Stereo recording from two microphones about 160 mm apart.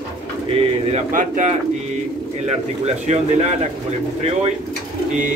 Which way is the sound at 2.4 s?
45° right (ahead or behind).